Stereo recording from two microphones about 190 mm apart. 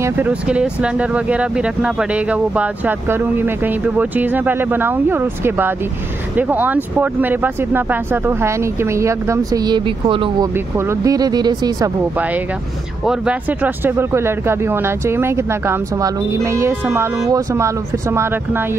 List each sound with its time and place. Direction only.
0.0 s speech: 10° right (ahead or behind); by 10.5 s 25° right (ahead or behind)
10.5 s speech: 15° right (ahead or behind)
13.0 s speech: 5° right (ahead or behind)